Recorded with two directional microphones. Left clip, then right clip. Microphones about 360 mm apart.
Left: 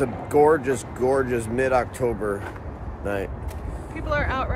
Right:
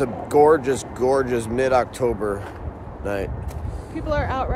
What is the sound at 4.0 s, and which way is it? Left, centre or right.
Vehicle, right.